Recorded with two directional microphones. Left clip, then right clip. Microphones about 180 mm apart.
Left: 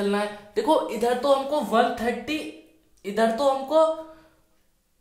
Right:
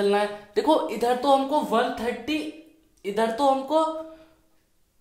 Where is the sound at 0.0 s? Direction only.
30° right (ahead or behind).